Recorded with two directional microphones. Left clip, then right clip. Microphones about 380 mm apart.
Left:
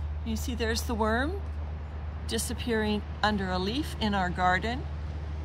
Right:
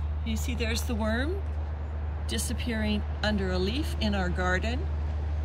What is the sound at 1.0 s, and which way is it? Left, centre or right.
Speech, left.